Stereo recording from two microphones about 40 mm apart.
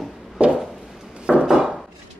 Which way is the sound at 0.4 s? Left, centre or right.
Right.